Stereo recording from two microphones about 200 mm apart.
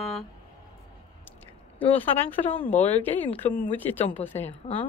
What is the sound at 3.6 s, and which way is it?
Speech, 10° left (ahead or behind).